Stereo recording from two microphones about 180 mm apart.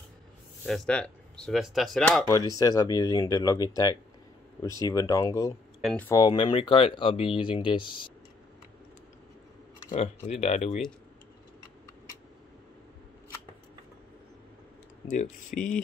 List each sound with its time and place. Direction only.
0.7 s speech: 5° left (ahead or behind)
2.6 s speech: 20° left (ahead or behind)
5.8 s speech: centre (ahead or behind)
6.0 s speech: 20° left (ahead or behind)
9.8 s speech: 40° left (ahead or behind)
15.0 s speech: 45° left (ahead or behind)